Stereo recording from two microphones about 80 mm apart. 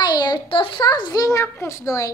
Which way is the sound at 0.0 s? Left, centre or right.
Left.